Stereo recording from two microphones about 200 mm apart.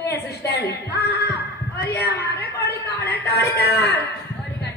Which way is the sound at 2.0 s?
55° left (ahead or behind).